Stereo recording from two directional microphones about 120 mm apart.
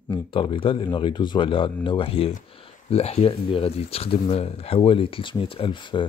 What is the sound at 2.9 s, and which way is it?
Speech, 60° left (ahead or behind).